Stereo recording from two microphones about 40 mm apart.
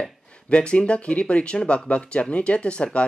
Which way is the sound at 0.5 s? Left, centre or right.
Left.